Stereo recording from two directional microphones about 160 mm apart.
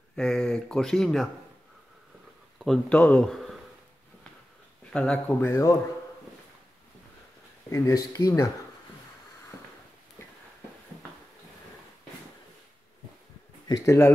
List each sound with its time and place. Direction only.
0.1 s speech: 5° left (ahead or behind)
2.6 s speech: 5° left (ahead or behind)
4.9 s speech: 5° left (ahead or behind)
7.7 s speech: 20° left (ahead or behind)
13.7 s speech: 20° left (ahead or behind)